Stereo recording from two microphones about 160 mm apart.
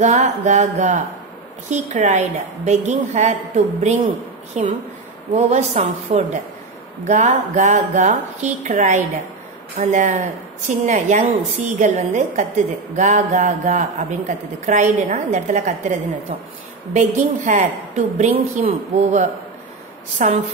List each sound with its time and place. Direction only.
0.0 s a woman's voice: 45° right (ahead or behind)
12.9 s mantra: 50° right (ahead or behind)
13.9 s a woman's voice: 50° right (ahead or behind)